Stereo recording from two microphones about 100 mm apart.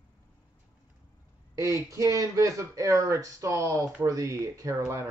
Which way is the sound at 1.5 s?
35° right (ahead or behind).